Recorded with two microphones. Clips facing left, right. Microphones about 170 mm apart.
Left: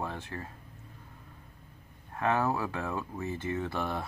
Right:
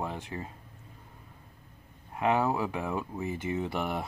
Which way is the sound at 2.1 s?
15° right (ahead or behind).